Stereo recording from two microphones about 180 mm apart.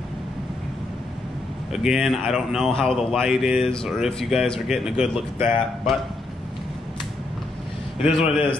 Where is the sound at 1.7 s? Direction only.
5° right (ahead or behind).